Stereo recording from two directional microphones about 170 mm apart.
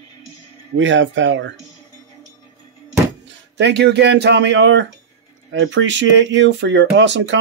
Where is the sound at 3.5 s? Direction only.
90° right.